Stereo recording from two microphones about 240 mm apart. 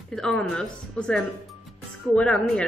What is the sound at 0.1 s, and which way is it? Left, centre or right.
Speech, centre.